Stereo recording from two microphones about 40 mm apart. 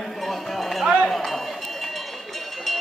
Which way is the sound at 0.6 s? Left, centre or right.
Centre.